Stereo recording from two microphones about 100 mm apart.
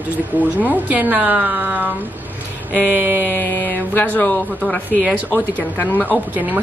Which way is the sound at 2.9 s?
20° right (ahead or behind).